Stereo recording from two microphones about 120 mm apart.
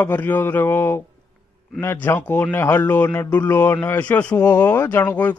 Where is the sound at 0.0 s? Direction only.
15° left (ahead or behind).